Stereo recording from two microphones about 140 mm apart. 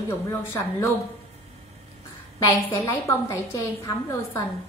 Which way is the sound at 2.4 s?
25° left (ahead or behind).